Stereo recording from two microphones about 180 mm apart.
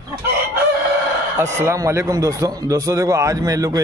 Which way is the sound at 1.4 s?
15° right (ahead or behind).